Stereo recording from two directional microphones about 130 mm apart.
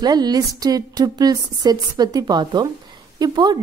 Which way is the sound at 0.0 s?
30° right (ahead or behind).